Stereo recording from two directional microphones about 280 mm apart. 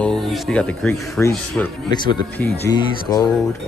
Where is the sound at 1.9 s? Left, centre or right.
Centre.